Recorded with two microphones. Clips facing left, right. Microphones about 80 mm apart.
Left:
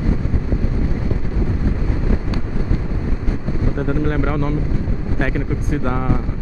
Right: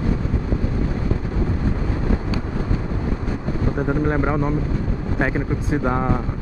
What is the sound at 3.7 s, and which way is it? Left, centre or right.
Speech, centre.